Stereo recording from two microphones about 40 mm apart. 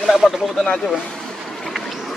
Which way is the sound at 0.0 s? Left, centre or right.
Centre.